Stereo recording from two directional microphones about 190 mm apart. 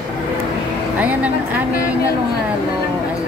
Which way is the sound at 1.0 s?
10° right (ahead or behind).